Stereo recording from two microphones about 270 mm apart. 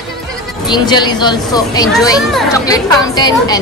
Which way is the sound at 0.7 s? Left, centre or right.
Centre.